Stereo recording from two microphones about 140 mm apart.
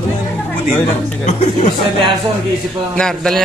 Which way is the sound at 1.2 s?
55° left (ahead or behind).